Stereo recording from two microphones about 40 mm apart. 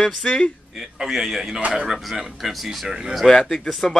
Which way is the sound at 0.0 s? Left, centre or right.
Left.